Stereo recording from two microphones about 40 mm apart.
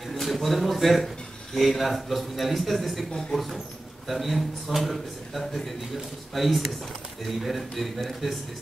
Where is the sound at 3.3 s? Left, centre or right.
Centre.